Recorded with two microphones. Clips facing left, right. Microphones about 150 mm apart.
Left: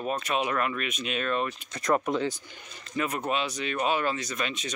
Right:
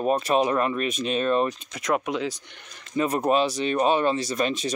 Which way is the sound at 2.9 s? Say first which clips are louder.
Right 7 dB; 35° right (ahead or behind).